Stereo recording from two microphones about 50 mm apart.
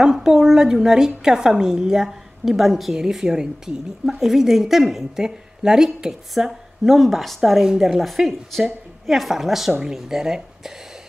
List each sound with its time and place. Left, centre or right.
0.0 s a woman's voice: centre